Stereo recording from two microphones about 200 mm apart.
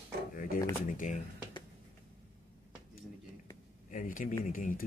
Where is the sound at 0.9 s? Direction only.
40° left (ahead or behind).